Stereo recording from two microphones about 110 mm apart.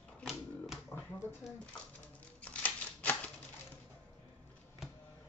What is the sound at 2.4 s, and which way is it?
Typewriter, 15° left (ahead or behind).